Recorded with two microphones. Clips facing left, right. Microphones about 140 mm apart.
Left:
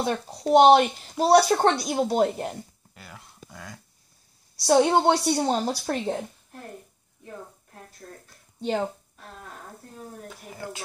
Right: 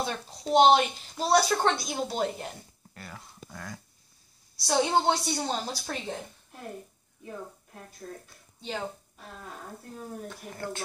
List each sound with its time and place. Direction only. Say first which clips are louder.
0.0 s speech: left 6 dB; 50° left (ahead or behind)
1.3 s speech: left 5 dB; 45° left (ahead or behind)
1.8 s speech: left 7 dB; 55° left (ahead or behind)
2.9 s speech: right 1 dB; centre (ahead or behind)
4.6 s a woman's voice: left 6 dB; 60° left (ahead or behind)
7.2 s a woman's voice: right 1 dB; 5° right (ahead or behind)
9.9 s speech: right 2 dB; centre (ahead or behind)